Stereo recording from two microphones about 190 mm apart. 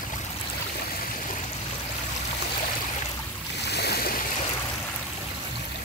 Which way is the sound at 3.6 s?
60° left (ahead or behind).